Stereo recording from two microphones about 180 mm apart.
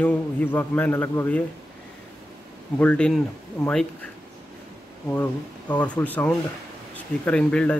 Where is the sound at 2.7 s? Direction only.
5° left (ahead or behind).